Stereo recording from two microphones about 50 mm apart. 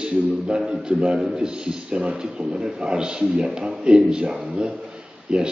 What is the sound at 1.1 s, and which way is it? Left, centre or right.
A man's voice, centre.